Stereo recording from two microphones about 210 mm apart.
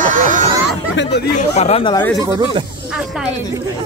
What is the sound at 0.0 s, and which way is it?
Hubbub, 40° right (ahead or behind).